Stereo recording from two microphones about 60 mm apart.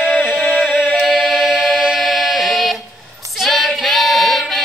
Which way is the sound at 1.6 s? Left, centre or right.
Centre.